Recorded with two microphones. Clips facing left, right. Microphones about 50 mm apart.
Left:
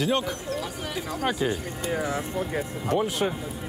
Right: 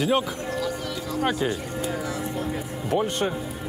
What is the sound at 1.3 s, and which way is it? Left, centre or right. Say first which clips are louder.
Speech: even; centre.